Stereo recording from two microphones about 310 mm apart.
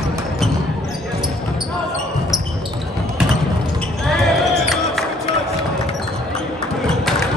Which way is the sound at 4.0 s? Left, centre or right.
Centre.